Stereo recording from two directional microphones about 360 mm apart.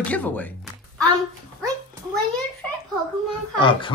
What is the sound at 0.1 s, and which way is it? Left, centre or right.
Speech, centre.